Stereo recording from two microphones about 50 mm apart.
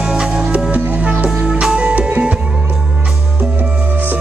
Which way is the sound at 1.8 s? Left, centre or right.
Right.